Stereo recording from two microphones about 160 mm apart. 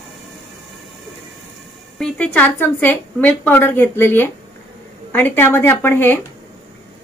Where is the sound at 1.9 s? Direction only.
5° left (ahead or behind).